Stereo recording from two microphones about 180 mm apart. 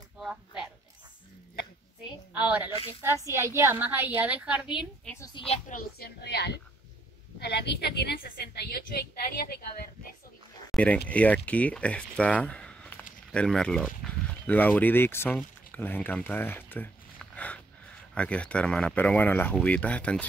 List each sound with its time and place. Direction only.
0.2 s a sound: 5° right (ahead or behind)
2.4 s a woman's voice: 10° right (ahead or behind)
5.1 s a woman's voice: 20° left (ahead or behind)
5.7 s a woman's voice: 55° left (ahead or behind)
10.7 s a sound: 5° left (ahead or behind)
11.1 s speech: 10° left (ahead or behind)